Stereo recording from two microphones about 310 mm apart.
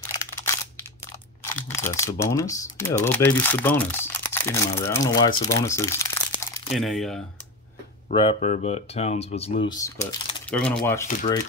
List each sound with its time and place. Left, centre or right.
1.4 s speech: centre
6.3 s crumpling: centre
8.1 s speech: centre